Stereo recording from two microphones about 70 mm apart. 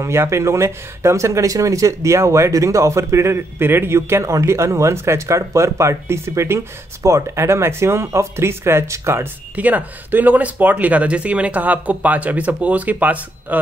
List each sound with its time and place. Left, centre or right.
0.0 s speech: right
9.6 s speech: right